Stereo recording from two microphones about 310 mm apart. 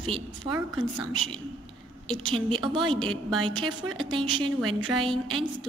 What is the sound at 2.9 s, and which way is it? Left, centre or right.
A woman's voice, centre.